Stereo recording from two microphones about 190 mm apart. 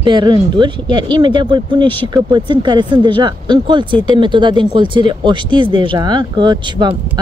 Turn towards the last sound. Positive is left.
turn(degrees=-25)  # may be behind; listen again after turning